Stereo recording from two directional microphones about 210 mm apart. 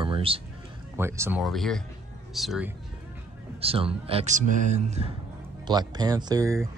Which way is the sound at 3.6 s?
25° right (ahead or behind).